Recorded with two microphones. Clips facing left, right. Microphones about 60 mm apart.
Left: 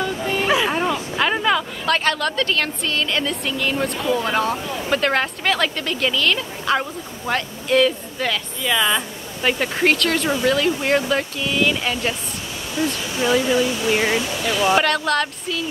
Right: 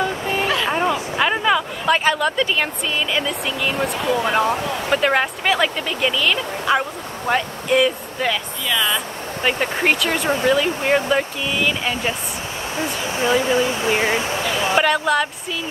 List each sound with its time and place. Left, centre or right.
0.0 s a sound: centre
0.7 s speech: centre
8.6 s speech: centre
12.8 s speech: right
14.8 s speech: centre